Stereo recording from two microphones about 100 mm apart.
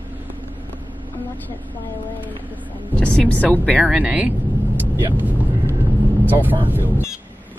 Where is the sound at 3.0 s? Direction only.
10° left (ahead or behind).